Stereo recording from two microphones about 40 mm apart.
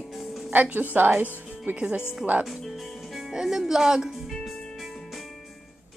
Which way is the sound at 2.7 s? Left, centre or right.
Centre.